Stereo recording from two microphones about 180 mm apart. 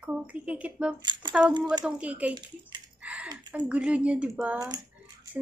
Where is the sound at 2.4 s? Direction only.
25° right (ahead or behind).